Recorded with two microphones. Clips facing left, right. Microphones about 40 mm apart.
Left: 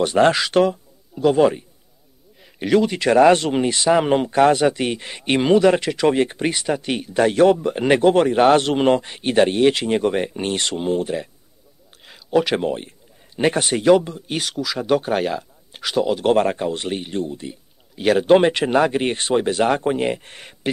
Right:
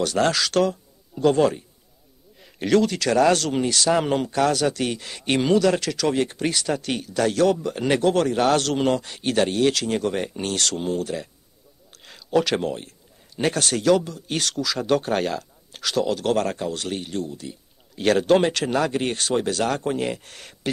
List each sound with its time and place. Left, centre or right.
0.0 s a man's voice: left
1.1 s a man's voice: centre
2.4 s a sound: centre
2.9 s a man's voice: left
12.1 s a man's voice: centre; by 17.6 s left
17.9 s speech: centre
18.2 s a man's voice: left